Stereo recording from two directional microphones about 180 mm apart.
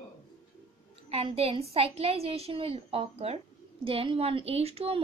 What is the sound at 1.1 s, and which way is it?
A woman's voice, 30° right (ahead or behind).